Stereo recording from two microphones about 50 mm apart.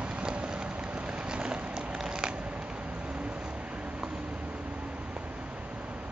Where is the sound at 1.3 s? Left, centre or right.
Centre.